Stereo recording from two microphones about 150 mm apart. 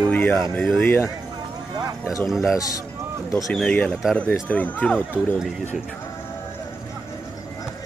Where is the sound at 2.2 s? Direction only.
Centre (ahead or behind).